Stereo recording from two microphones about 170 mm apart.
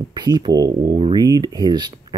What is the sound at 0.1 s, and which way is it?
Speech, 25° right (ahead or behind).